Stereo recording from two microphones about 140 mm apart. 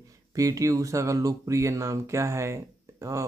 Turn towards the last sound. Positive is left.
turn(degrees=-20)  # may be behind; listen again after turning